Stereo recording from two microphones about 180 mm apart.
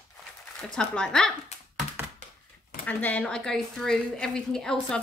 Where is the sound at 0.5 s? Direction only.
5° left (ahead or behind).